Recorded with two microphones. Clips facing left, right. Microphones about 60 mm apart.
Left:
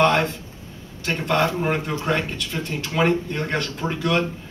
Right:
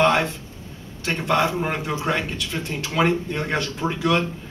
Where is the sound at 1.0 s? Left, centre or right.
Centre.